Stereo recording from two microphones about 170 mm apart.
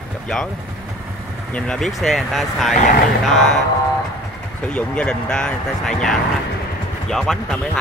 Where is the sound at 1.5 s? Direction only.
5° left (ahead or behind).